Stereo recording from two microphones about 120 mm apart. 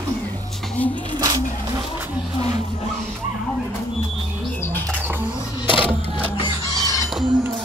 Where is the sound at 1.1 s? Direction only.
30° right (ahead or behind).